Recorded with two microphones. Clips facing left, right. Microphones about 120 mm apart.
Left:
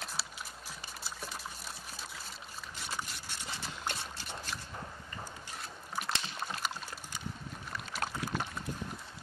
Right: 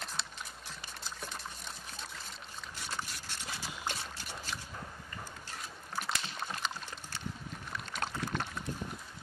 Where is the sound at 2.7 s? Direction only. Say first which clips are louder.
Even; centre (ahead or behind).